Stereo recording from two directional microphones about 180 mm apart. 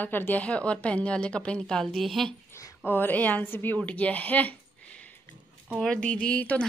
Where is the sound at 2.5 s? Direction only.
15° left (ahead or behind).